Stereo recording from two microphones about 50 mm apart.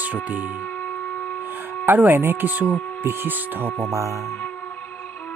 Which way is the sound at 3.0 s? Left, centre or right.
Right.